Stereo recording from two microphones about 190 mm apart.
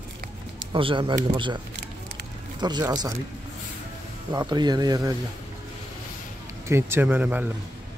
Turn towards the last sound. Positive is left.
turn(degrees=-10)  # may be behind; listen again after turning